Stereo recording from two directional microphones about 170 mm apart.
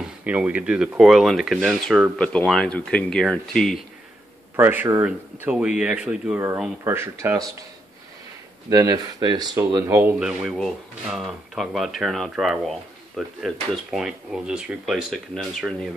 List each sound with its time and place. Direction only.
0.2 s speech: 10° right (ahead or behind)
4.6 s speech: 10° right (ahead or behind)
8.6 s speech: 20° right (ahead or behind)
10.1 s speech: 5° right (ahead or behind)